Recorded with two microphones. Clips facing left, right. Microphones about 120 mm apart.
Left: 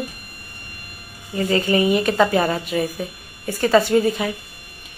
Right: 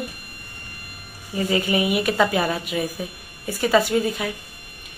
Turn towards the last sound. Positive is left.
turn(degrees=0)  # may be behind; listen again after turning